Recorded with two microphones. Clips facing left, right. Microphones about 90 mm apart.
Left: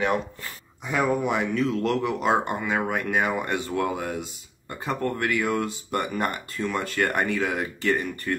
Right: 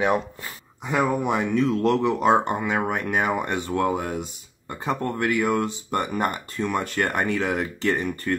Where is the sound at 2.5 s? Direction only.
15° right (ahead or behind).